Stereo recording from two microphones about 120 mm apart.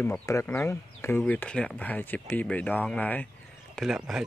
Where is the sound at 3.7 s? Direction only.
5° right (ahead or behind).